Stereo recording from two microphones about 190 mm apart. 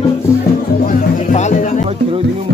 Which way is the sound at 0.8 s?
40° left (ahead or behind).